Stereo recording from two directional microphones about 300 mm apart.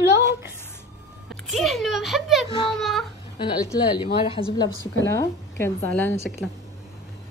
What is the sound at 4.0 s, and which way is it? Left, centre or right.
Speech, centre.